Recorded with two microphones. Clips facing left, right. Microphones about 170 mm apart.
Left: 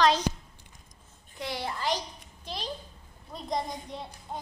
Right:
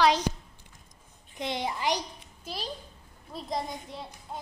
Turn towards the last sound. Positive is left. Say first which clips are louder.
# left 1 dB
turn(degrees=0)  # may be behind; listen again after turning